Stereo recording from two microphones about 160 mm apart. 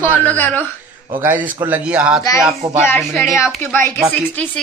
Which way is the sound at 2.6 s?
40° right (ahead or behind).